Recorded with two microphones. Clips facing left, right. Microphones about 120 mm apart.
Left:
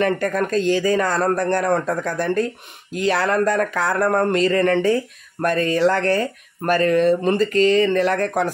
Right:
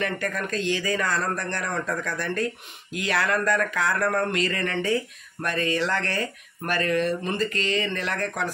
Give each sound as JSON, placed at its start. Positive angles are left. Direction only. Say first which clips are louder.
{"t": 0.0, "sound": "speech", "louder": "left 8 dB", "side_deg": 45}